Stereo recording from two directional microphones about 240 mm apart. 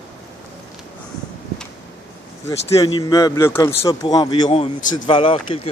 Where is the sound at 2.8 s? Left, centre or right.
Centre.